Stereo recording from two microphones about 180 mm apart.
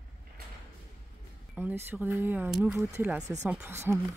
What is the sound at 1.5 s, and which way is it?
Speech, 10° right (ahead or behind).